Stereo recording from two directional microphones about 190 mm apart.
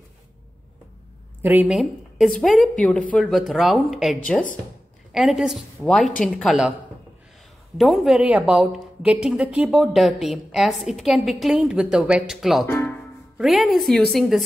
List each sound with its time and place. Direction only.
1.4 s a woman's voice: 10° right (ahead or behind)
7.7 s a woman's voice: centre (ahead or behind)
12.6 s music: 10° left (ahead or behind)